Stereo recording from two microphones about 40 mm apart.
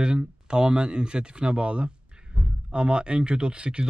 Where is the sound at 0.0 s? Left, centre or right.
Right.